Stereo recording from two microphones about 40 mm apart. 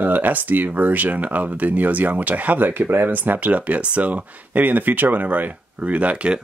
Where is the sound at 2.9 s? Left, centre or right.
Right.